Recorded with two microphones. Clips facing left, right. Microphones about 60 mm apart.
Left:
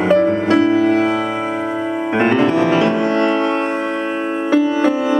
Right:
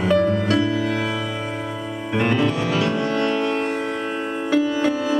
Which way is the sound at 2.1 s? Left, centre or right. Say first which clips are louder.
Left 6 dB; left.